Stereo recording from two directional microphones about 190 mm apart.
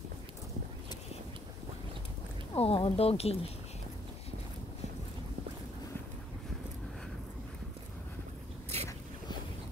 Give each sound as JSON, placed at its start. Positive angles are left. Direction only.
{"t": 2.5, "sound": "speech", "side_deg": 30}